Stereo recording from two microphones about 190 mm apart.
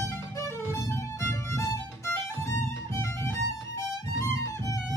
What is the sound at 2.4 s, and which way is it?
Violin, 15° left (ahead or behind).